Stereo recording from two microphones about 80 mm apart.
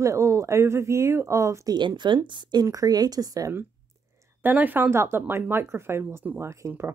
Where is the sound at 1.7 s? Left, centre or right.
Right.